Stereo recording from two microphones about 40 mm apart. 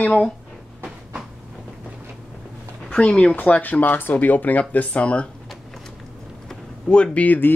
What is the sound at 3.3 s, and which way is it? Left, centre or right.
Speech, left.